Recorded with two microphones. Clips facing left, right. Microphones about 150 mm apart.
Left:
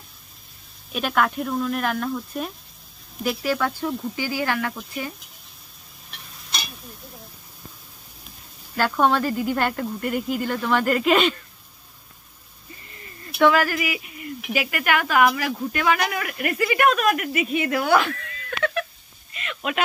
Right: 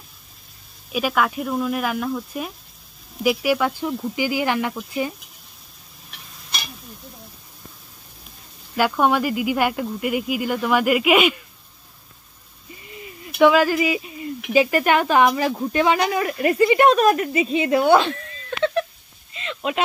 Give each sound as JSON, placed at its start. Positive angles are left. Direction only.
{"t": 0.9, "sound": "speech", "side_deg": -5}
{"t": 8.7, "sound": "speech", "side_deg": -10}
{"t": 12.8, "sound": "speech", "side_deg": -15}
{"t": 19.3, "sound": "a sound", "side_deg": -25}